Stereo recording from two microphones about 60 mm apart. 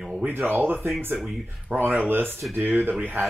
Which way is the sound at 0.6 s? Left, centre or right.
Right.